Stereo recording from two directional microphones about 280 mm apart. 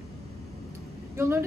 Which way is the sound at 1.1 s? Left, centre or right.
Centre.